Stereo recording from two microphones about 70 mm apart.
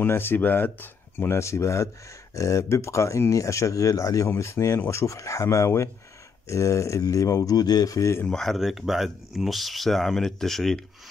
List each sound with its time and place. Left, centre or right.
0.0 s speech: left
1.4 s speech: left
8.3 s speech: centre